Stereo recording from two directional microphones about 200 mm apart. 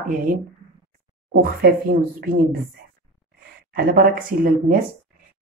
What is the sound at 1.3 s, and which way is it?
Speech, 45° right (ahead or behind).